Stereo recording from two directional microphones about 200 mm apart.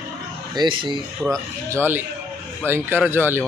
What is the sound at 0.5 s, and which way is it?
Speech, 25° right (ahead or behind).